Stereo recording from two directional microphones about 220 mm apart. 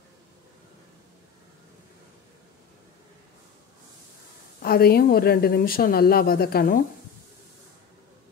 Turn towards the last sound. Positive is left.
turn(degrees=40)  # may be behind; listen again after turning